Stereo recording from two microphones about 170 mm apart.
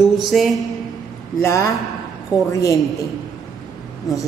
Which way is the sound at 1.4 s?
20° left (ahead or behind).